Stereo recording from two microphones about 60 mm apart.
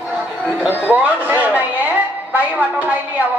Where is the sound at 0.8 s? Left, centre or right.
Right.